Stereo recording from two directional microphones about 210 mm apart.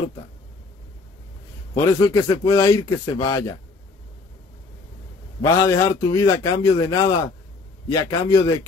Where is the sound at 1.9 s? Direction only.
15° left (ahead or behind).